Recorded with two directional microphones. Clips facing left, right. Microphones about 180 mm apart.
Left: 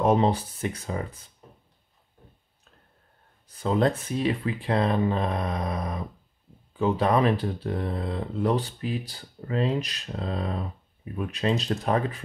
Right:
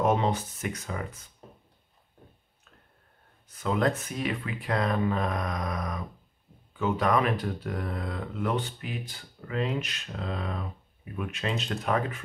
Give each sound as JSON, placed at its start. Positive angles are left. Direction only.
{"t": 0.0, "sound": "speech", "side_deg": 35}
{"t": 3.4, "sound": "speech", "side_deg": 30}